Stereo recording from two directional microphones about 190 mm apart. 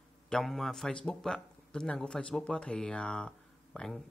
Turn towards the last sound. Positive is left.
turn(degrees=5)  # may be behind; listen again after turning